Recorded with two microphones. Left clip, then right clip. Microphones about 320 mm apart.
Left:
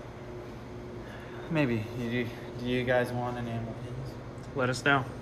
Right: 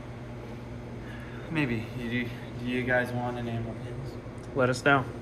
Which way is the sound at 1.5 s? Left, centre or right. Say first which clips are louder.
Left 1 dB; left.